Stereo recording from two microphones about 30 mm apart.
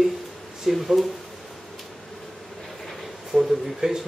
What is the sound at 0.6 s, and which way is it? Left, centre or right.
Speech, centre.